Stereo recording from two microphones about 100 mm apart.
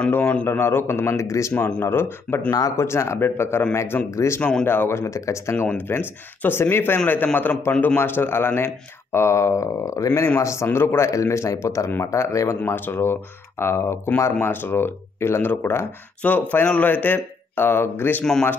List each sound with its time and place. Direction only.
0.1 s speech: 15° left (ahead or behind)
1.5 s speech: 10° left (ahead or behind)
1.8 s speech: 25° left (ahead or behind)
4.4 s speech: 10° left (ahead or behind)
4.6 s a man's voice: 20° left (ahead or behind)
12.6 s speech: 20° left (ahead or behind)